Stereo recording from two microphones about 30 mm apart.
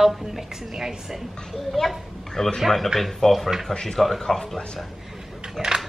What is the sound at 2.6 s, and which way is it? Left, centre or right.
Speech, centre.